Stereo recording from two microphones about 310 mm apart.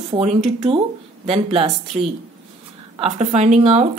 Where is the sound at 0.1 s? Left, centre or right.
Right.